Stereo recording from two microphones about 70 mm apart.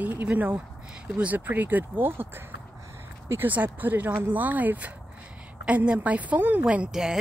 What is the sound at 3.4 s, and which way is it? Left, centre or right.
Speech, right.